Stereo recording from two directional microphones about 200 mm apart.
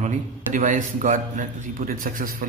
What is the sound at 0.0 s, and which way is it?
A man's voice, 40° right (ahead or behind).